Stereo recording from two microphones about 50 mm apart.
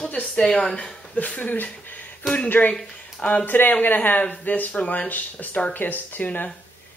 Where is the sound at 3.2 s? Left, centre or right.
Left.